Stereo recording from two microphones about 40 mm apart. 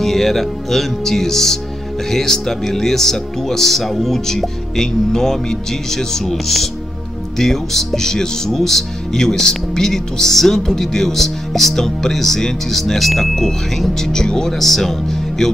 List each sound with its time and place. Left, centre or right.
0.0 s speech: centre